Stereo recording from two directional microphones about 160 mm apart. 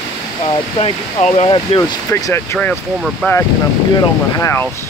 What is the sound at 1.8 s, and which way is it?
Speech, 20° left (ahead or behind).